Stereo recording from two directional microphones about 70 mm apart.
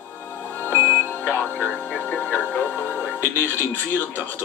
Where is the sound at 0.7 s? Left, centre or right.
Left.